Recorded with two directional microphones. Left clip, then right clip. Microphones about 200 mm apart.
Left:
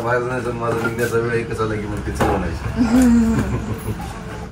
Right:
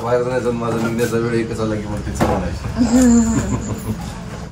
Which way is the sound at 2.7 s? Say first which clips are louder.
Right 2 dB; 5° right (ahead or behind).